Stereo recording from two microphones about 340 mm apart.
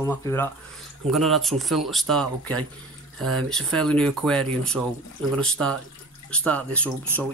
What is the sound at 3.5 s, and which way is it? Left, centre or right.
Speech, centre.